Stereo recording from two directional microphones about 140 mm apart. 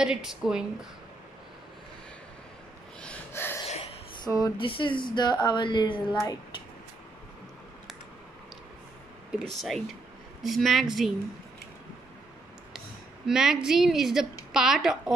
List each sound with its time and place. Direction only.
0.0 s a woman's voice: 5° right (ahead or behind)
3.0 s gasp: 10° left (ahead or behind)
4.2 s speech: 30° left (ahead or behind)
9.3 s a woman's voice: centre (ahead or behind)
13.3 s a woman's voice: 5° right (ahead or behind)